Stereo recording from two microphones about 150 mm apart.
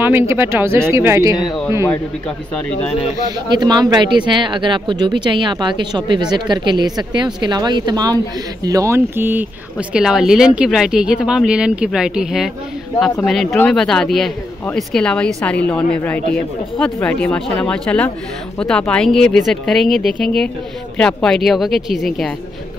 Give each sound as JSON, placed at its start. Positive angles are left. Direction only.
{"t": 0.0, "sound": "speech", "side_deg": -15}
{"t": 3.3, "sound": "a man's voice", "side_deg": -30}